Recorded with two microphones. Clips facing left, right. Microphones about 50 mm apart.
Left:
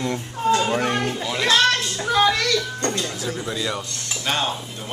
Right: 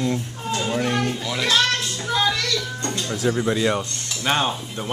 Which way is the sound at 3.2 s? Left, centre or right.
Right.